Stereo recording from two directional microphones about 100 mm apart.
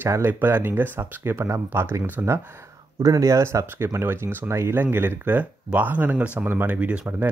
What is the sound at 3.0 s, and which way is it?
Speech, 35° right (ahead or behind).